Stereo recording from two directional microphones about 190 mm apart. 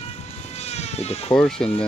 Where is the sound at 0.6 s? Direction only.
35° left (ahead or behind).